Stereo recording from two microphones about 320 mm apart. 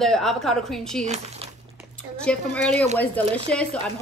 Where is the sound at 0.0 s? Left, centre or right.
Centre.